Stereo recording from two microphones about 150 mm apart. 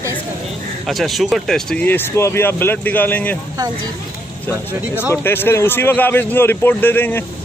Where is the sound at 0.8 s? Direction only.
Centre (ahead or behind).